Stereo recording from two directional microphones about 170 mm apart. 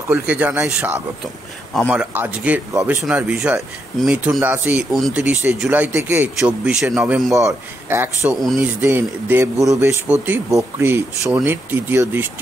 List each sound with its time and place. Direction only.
0.1 s speech: 10° right (ahead or behind)
3.1 s speech: 5° right (ahead or behind)
7.3 s speech: 15° right (ahead or behind)